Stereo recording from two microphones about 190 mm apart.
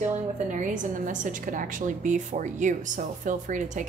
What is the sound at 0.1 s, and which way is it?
A woman's voice, 40° right (ahead or behind).